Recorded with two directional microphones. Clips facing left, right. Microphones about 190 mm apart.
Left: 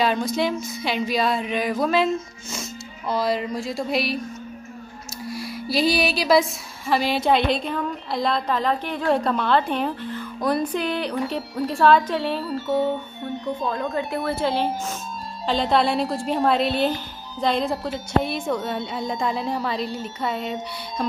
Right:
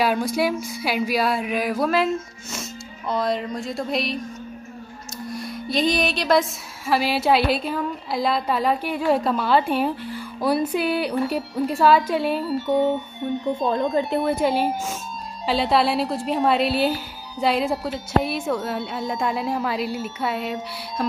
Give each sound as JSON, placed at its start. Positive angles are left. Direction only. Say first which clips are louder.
{"t": 0.0, "sound": "speech", "louder": "right 1 dB", "side_deg": -10}
{"t": 5.2, "sound": "music", "louder": "even", "side_deg": 5}
{"t": 6.9, "sound": "a woman's voice", "louder": "even", "side_deg": -5}